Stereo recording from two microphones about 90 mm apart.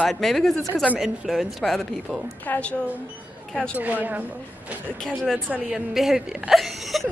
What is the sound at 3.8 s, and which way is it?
Speech, 20° right (ahead or behind).